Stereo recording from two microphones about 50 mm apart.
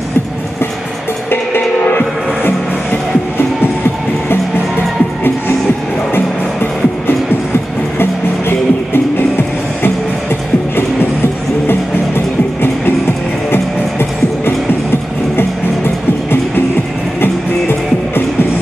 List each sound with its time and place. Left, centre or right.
1.3 s music: left
8.0 s music: left
13.5 s music: left
17.2 s music: left